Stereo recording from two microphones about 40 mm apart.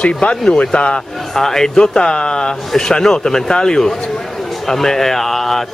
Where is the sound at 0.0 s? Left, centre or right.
Left.